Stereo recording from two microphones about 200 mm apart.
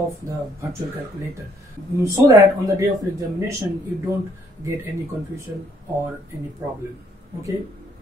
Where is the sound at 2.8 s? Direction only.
15° right (ahead or behind).